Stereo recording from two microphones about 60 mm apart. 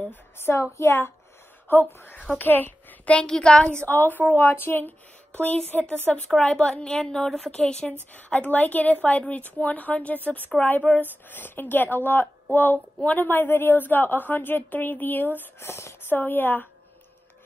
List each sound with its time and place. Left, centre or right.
0.4 s a woman's voice: left
1.7 s a child's voice: left
3.2 s a woman's voice: centre
6.3 s a woman's voice: centre
7.5 s a woman's voice: centre; by 16.0 s left
16.1 s speech: left